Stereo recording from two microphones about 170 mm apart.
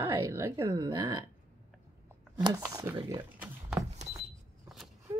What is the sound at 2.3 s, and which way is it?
Speech, 20° right (ahead or behind).